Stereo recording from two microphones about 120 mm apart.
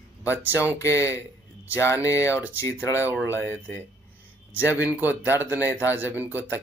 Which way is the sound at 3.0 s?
15° right (ahead or behind).